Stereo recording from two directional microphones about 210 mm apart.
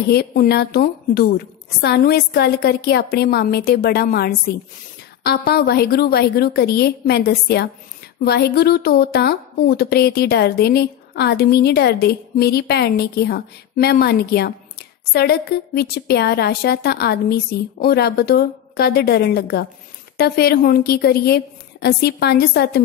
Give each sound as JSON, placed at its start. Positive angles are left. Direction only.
{"t": 0.1, "sound": "a woman's voice", "side_deg": 45}